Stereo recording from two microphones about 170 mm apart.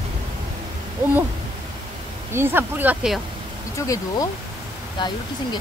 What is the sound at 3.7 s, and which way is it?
Speech, 20° left (ahead or behind).